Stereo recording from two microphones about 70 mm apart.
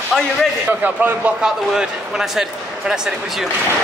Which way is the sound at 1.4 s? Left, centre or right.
Centre.